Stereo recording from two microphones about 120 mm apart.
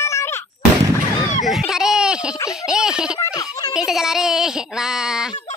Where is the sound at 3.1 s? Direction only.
30° left (ahead or behind).